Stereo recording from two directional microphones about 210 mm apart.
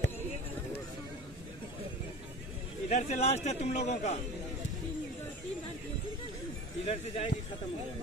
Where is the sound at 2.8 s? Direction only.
35° left (ahead or behind).